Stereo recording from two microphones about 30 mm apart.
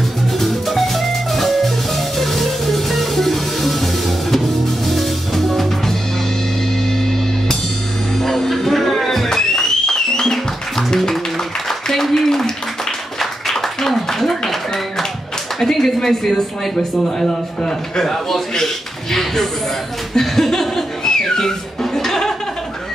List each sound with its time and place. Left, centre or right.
0.4 s music: centre
8.2 s music: centre
9.6 s music: centre
11.9 s a sound: centre
15.6 s a sound: centre
18.0 s a man's voice: centre
20.2 s music: centre